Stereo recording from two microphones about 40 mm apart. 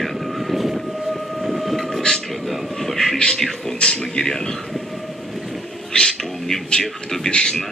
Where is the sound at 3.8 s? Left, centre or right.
Left.